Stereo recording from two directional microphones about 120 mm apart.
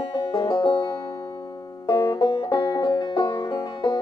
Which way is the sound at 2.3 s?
45° left (ahead or behind).